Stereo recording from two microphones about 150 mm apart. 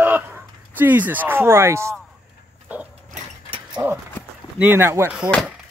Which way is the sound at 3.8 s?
20° right (ahead or behind).